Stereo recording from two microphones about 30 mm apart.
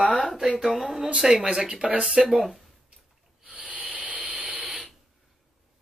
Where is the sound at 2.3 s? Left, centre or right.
Centre.